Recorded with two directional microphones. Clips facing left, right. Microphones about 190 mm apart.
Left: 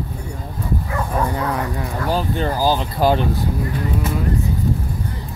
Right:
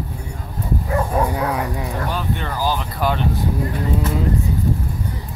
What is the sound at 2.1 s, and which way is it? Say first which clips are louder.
Vehicle: left 4 dB; 35° left (ahead or behind).